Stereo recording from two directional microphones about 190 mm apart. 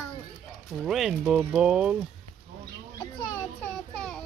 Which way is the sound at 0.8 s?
5° right (ahead or behind).